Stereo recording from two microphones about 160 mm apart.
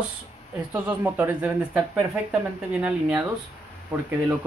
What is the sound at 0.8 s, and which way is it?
Speech, 10° right (ahead or behind).